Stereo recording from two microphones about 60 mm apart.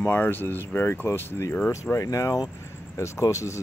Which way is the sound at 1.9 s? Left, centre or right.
Left.